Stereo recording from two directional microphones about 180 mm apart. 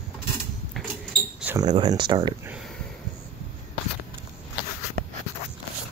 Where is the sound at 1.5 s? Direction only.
25° right (ahead or behind).